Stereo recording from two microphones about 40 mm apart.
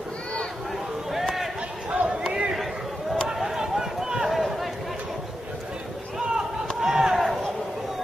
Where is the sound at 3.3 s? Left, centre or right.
Centre.